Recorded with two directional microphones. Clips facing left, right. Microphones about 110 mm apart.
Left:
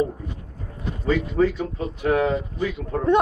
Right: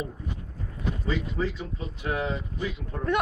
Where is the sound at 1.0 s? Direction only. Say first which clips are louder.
Left 10 dB; 55° left (ahead or behind).